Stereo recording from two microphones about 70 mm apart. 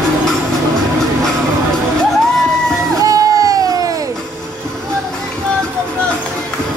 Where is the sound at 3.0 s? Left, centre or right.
Right.